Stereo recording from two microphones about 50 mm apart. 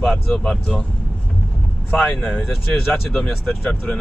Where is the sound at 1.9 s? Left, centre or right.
Left.